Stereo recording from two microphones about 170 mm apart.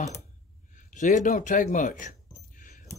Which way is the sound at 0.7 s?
50° left (ahead or behind).